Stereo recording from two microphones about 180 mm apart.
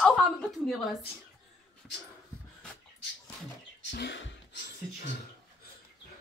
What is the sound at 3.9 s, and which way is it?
Speech, 70° left (ahead or behind).